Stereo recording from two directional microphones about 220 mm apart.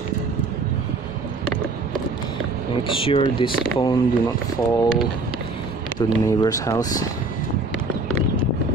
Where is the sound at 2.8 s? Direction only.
25° left (ahead or behind).